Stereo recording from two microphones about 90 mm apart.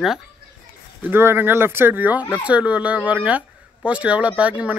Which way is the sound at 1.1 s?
25° right (ahead or behind).